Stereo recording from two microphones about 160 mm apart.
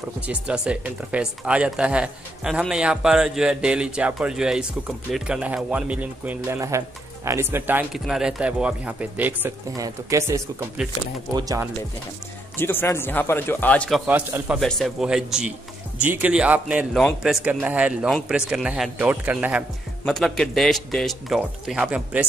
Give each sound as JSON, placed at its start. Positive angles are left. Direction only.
{"t": 0.3, "sound": "speech", "side_deg": -10}
{"t": 12.5, "sound": "speech", "side_deg": 15}
{"t": 14.0, "sound": "speech", "side_deg": -10}
{"t": 14.6, "sound": "a man's voice", "side_deg": 5}
{"t": 20.1, "sound": "a man's voice", "side_deg": 5}